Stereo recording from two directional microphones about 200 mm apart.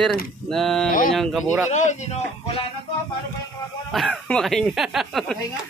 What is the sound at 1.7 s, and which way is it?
Speech, 35° left (ahead or behind).